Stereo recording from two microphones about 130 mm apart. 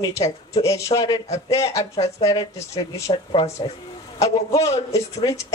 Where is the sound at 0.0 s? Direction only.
30° left (ahead or behind).